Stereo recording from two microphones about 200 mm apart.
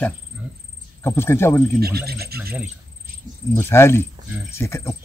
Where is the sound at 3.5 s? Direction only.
10° left (ahead or behind).